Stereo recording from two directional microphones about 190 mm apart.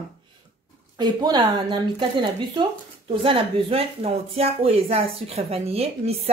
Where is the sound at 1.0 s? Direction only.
20° right (ahead or behind).